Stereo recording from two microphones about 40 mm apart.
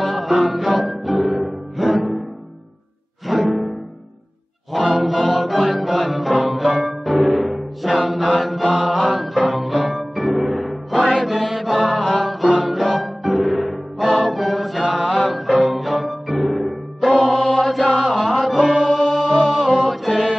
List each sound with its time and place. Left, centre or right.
0.0 s music: centre
3.3 s music: centre
4.7 s music: centre
17.1 s mantra: centre
17.6 s chant: centre
18.9 s music: centre